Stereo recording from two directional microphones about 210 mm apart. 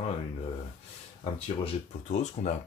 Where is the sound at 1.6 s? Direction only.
30° left (ahead or behind).